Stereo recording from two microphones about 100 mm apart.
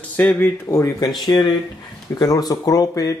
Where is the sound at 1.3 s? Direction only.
45° left (ahead or behind).